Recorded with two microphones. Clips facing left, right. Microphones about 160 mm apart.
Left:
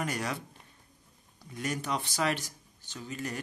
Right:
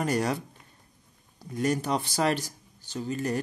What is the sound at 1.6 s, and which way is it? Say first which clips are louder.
Speech: right 7 dB; 35° right (ahead or behind).